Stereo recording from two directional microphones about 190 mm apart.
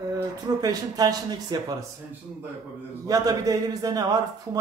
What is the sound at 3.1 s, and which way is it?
Speech, 20° right (ahead or behind).